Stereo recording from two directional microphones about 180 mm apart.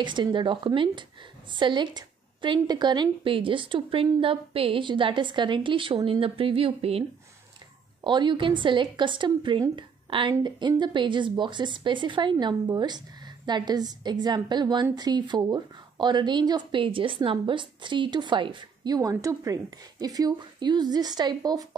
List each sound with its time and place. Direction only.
0.0 s speech: 25° right (ahead or behind)